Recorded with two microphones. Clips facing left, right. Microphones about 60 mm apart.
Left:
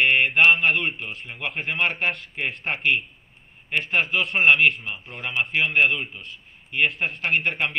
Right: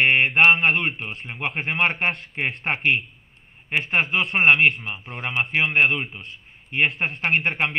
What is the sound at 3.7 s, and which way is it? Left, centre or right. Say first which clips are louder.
Speech: right 1 dB; centre.